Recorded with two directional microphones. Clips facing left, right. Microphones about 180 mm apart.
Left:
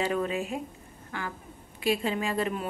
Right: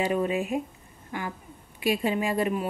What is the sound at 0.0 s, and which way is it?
A woman's voice, 15° right (ahead or behind).